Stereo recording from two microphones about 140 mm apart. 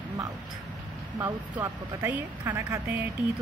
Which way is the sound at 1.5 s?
10° right (ahead or behind).